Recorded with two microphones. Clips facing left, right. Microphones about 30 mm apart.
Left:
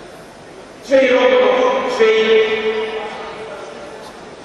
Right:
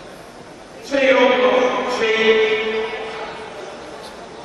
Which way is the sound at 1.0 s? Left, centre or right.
Centre.